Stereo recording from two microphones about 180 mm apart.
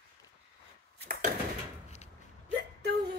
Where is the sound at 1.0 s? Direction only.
50° right (ahead or behind).